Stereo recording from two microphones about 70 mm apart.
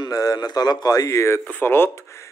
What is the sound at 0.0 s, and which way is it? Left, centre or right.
Speech, left.